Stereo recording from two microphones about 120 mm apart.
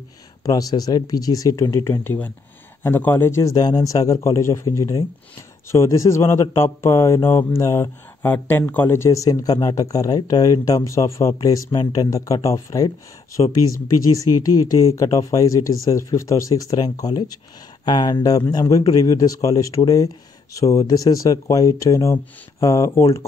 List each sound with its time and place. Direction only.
0.4 s speech: 30° left (ahead or behind)